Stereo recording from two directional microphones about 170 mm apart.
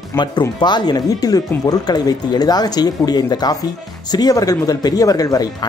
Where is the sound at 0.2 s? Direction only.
25° left (ahead or behind).